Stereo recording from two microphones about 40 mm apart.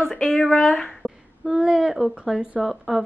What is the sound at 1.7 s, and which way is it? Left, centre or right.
Speech, centre.